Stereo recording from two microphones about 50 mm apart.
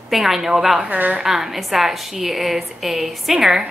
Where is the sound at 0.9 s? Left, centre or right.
Right.